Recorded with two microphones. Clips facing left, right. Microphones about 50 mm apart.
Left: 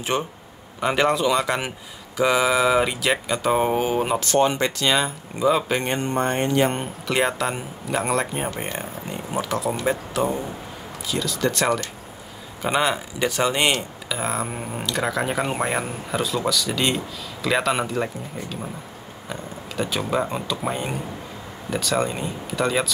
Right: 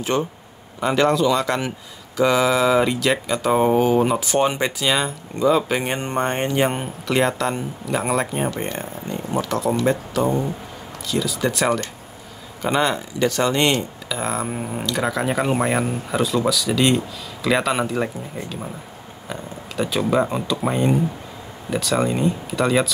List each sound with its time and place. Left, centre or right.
0.1 s a man's voice: centre
4.3 s speech: centre
5.9 s speech: right
6.5 s speech: centre
7.1 s speech: centre
8.6 s speech: centre
12.6 s speech: centre